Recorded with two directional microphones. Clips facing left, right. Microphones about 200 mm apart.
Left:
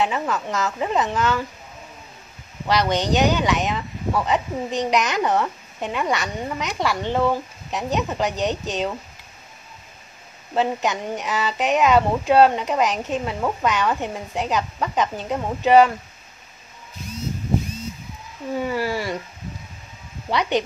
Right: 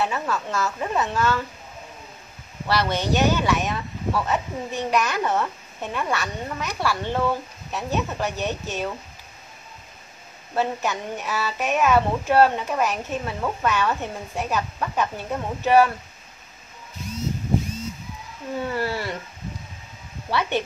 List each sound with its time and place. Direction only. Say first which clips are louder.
0.0 s speech: left 2 dB; 15° left (ahead or behind)
2.7 s speech: left 3 dB; 15° left (ahead or behind)
10.5 s speech: left 3 dB; 15° left (ahead or behind)
18.6 s speech: left 2 dB; 10° left (ahead or behind)
20.2 s speech: left 3 dB; 15° left (ahead or behind)